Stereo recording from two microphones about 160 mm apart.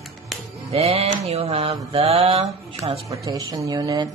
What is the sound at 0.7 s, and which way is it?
Mantra, 40° right (ahead or behind).